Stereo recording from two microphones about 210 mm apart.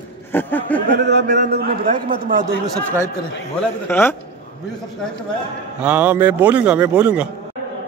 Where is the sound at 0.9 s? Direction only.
55° right (ahead or behind).